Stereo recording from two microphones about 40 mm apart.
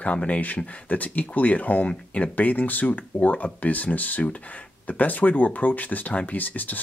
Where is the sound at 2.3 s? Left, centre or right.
Left.